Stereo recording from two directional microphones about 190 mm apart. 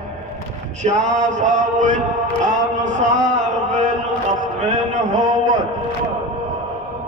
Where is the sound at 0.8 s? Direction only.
40° right (ahead or behind).